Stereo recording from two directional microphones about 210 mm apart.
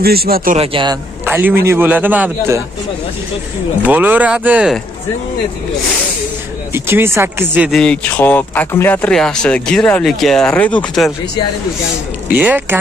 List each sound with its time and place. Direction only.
0.0 s speech: 45° right (ahead or behind)
0.6 s speech: 25° right (ahead or behind)
1.2 s a man's voice: 10° right (ahead or behind)
3.8 s a man's voice: 10° right (ahead or behind)
6.7 s a man's voice: 10° right (ahead or behind)
7.8 s speech: 5° left (ahead or behind)
12.3 s a man's voice: 10° right (ahead or behind)